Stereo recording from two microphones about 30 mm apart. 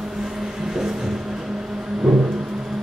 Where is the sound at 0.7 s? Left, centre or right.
Centre.